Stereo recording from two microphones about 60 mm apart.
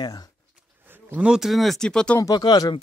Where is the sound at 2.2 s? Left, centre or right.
Left.